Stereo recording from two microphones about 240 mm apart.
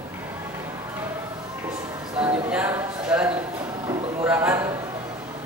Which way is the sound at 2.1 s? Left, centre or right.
Centre.